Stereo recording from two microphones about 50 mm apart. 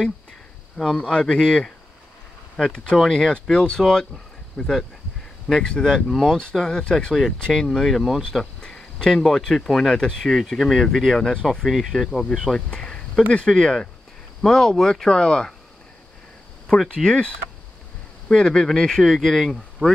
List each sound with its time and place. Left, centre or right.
0.7 s speech: centre
12.5 s cricket: centre
13.3 s speech: centre
16.9 s speech: centre
18.3 s speech: centre